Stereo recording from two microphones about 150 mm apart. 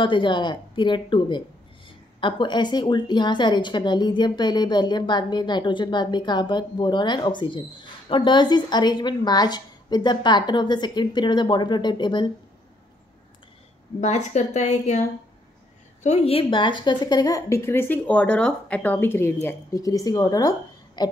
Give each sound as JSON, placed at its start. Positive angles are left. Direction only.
{"t": 0.0, "sound": "a woman's voice", "side_deg": 35}
{"t": 14.0, "sound": "a woman's voice", "side_deg": 50}